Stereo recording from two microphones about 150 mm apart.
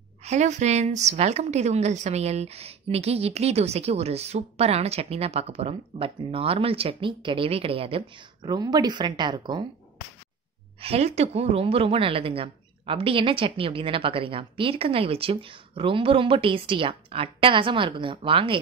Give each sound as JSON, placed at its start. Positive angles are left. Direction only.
{"t": 0.2, "sound": "a woman's voice", "side_deg": -50}
{"t": 10.8, "sound": "a woman's voice", "side_deg": -45}